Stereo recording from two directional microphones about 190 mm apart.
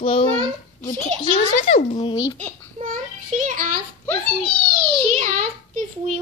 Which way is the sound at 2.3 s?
45° right (ahead or behind).